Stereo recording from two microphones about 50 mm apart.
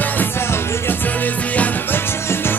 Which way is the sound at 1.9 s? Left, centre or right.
Left.